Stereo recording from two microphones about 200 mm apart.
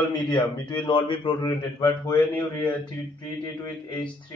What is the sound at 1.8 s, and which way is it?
Speech, 15° left (ahead or behind).